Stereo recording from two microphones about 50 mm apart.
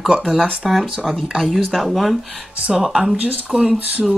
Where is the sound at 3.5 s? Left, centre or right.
Centre.